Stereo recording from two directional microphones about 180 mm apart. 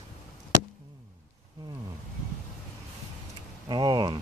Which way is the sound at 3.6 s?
25° right (ahead or behind).